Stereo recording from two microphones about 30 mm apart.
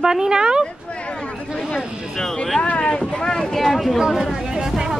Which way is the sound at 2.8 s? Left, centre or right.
Left.